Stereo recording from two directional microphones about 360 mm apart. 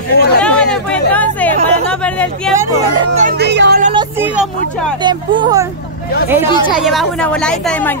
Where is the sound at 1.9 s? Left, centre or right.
Centre.